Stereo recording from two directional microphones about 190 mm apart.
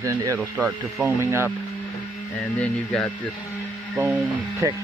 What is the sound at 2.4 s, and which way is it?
Speech, centre (ahead or behind).